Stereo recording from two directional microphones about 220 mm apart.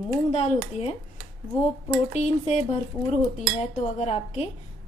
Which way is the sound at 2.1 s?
30° left (ahead or behind).